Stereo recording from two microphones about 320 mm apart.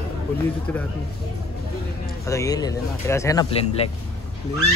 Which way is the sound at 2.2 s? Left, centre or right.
Centre.